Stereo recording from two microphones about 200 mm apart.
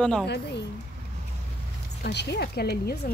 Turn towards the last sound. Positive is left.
turn(degrees=55)  # may be behind; listen again after turning